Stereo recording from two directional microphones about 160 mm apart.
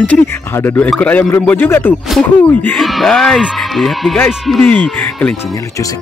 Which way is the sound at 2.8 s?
Centre (ahead or behind).